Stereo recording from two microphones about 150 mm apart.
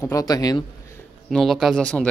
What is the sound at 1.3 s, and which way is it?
Speech, centre (ahead or behind).